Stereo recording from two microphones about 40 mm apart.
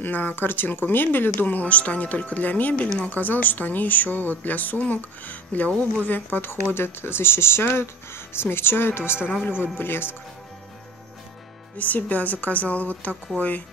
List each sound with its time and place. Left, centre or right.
0.0 s speech: left
5.7 s a woman's voice: left
6.0 s speech: left
6.5 s speech: left
9.5 s speech: left
11.8 s speech: left